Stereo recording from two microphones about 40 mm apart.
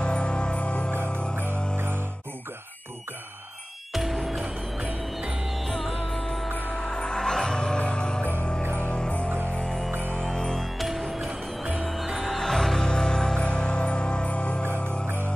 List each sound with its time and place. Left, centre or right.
0.0 s music: left
0.9 s music: right
3.9 s music: centre
5.5 s music: centre
6.7 s music: centre
9.8 s music: right
10.2 s music: centre
10.8 s music: centre
11.2 s music: right
11.8 s music: centre
13.4 s music: left
15.0 s music: right